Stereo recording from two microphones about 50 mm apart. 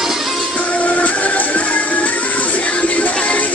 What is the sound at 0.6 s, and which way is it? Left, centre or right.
Music, left.